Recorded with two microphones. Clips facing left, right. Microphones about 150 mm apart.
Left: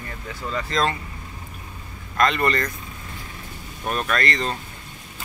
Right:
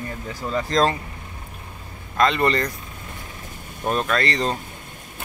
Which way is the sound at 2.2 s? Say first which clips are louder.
Right 2 dB; 25° right (ahead or behind).